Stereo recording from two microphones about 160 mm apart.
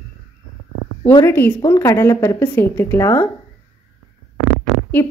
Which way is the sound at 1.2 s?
15° left (ahead or behind).